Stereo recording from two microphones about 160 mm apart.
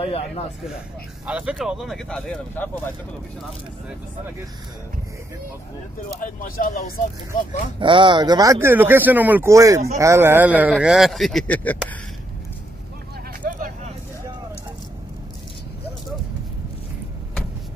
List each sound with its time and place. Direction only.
0.0 s speech: 35° left (ahead or behind)
1.2 s speech: 5° right (ahead or behind); by 2.9 s 10° left (ahead or behind)
6.2 s speech: 60° left (ahead or behind)
7.8 s speech: 30° right (ahead or behind); by 11.8 s 10° left (ahead or behind)
13.4 s vehicle: 55° right (ahead or behind)